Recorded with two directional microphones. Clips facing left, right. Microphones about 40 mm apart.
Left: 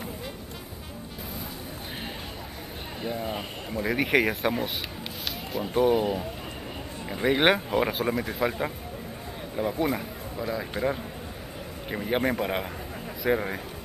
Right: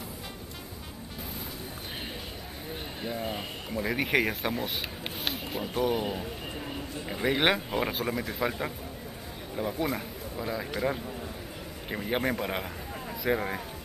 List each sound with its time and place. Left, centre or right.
3.0 s speech: centre
5.8 s speech: centre
7.1 s speech: centre
11.9 s a man's voice: centre